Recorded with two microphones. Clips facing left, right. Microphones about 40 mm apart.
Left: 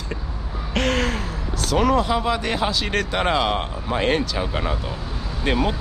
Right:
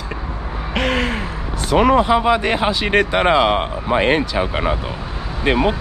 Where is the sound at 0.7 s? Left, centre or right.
Centre.